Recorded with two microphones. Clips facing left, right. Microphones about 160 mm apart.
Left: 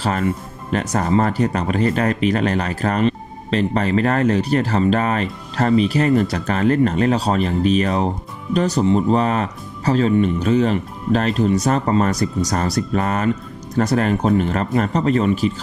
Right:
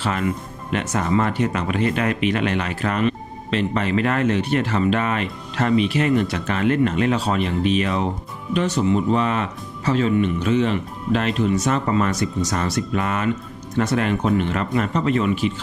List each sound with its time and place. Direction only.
0.0 s speech: 40° left (ahead or behind)